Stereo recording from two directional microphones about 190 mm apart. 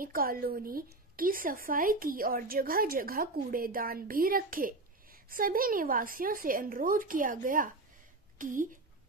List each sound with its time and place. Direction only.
0.0 s a woman's voice: 50° right (ahead or behind)